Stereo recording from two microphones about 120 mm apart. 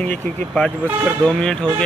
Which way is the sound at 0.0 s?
10° left (ahead or behind).